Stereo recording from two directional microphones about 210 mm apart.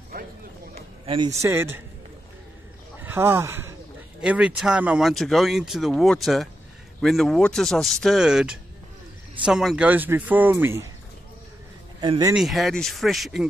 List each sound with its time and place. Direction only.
0.1 s a sound: 45° right (ahead or behind)
0.7 s a man's voice: 25° right (ahead or behind)
3.0 s a sound: 10° right (ahead or behind)
4.2 s speech: 5° right (ahead or behind)
12.0 s speech: 20° right (ahead or behind)
12.4 s speech: centre (ahead or behind)